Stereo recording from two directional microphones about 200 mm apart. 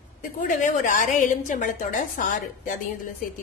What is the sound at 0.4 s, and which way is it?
A woman's voice, 40° left (ahead or behind).